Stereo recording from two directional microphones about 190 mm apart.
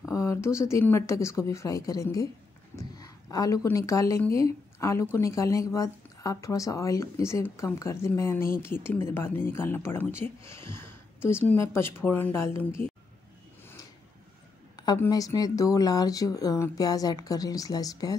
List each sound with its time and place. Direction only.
0.1 s a woman's voice: 15° left (ahead or behind)
15.0 s speech: 20° left (ahead or behind)